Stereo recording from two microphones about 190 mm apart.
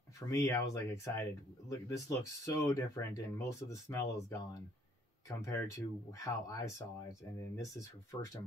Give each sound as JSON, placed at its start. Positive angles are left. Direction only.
{"t": 0.3, "sound": "speech", "side_deg": 15}